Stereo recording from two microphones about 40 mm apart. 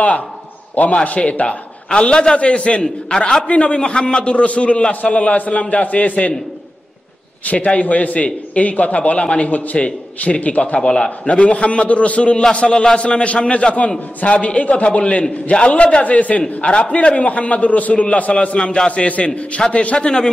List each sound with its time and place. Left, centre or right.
1.0 s a man's voice: left
3.4 s a man's voice: left
7.4 s a man's voice: left